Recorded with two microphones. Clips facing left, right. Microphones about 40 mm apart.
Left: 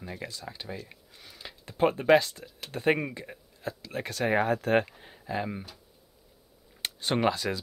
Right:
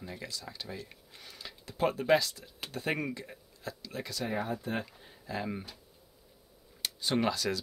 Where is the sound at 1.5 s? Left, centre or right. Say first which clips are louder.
Left 5 dB; left.